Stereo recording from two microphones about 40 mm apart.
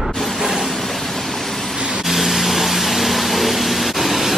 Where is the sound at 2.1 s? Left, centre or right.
Centre.